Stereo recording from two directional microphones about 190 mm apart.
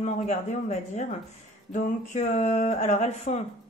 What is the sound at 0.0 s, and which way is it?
Speech, 40° left (ahead or behind).